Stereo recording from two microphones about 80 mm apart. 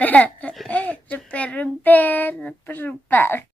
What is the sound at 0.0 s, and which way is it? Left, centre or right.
Speech, centre.